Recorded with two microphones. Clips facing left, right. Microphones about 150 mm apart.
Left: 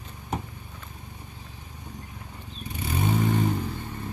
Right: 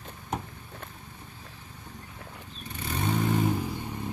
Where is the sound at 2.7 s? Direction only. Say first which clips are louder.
Left 3 dB; 10° left (ahead or behind); by 3.7 s 5° right (ahead or behind).